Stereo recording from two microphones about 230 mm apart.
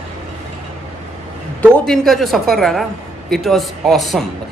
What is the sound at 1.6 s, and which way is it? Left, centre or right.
A man's voice, centre.